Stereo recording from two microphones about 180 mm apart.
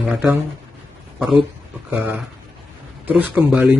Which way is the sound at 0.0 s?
5° right (ahead or behind).